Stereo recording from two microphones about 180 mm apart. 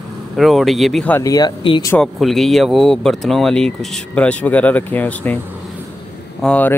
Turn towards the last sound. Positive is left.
turn(degrees=10)  # may be behind; listen again after turning